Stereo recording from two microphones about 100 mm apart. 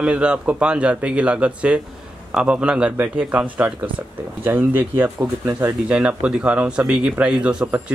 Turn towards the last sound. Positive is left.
turn(degrees=-10)  # may be behind; listen again after turning